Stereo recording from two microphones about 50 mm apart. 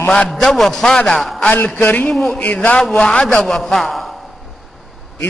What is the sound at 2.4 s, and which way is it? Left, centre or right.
Speech, left.